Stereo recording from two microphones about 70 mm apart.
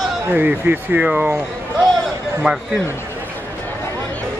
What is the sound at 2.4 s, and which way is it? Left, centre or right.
Speech, centre.